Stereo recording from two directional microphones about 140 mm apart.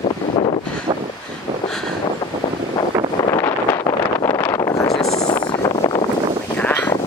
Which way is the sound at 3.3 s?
20° left (ahead or behind).